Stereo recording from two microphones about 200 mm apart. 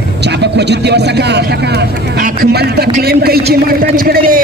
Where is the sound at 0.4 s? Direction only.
55° right (ahead or behind).